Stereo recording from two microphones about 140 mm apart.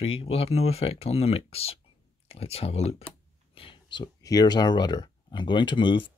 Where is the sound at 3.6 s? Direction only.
35° left (ahead or behind).